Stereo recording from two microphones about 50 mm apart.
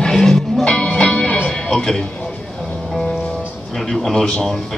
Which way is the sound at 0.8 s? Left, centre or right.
Centre.